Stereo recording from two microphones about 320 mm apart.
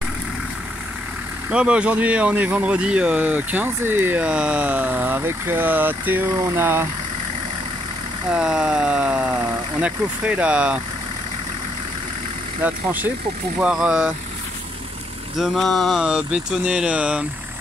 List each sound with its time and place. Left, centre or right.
1.5 s speech: centre
8.3 s speech: centre
12.6 s speech: centre
15.3 s speech: centre